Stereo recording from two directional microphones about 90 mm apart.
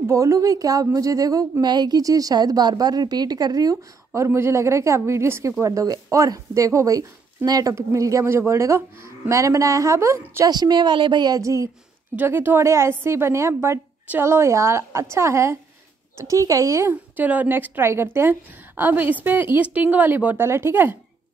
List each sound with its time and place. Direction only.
0.1 s speech: 35° right (ahead or behind)
1.6 s speech: 50° right (ahead or behind); by 10.5 s 35° right (ahead or behind)
10.5 s speech: 50° right (ahead or behind)
12.2 s a woman's voice: 20° right (ahead or behind)
17.2 s a woman's voice: 20° right (ahead or behind)